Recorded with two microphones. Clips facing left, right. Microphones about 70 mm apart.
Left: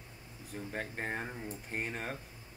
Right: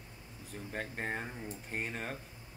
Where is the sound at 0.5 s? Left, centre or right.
Centre.